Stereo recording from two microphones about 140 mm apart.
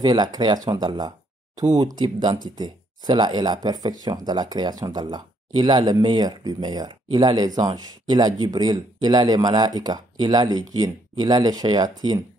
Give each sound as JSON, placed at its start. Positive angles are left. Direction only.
{"t": 0.0, "sound": "speech", "side_deg": -30}